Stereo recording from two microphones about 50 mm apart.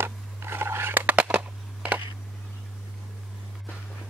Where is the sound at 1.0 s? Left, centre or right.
Right.